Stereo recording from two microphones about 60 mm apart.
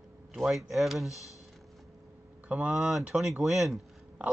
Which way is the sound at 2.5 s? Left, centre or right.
Right.